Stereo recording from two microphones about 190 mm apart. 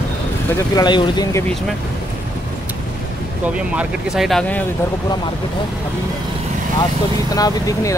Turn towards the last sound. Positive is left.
turn(degrees=20)  # may be behind; listen again after turning